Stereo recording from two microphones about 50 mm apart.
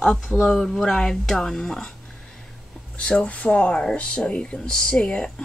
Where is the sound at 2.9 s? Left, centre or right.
Centre.